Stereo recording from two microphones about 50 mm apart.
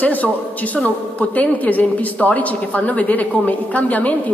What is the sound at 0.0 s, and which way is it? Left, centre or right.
Speech, left.